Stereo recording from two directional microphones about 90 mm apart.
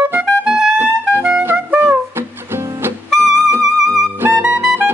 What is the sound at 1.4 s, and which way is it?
Brass instrument, 25° right (ahead or behind).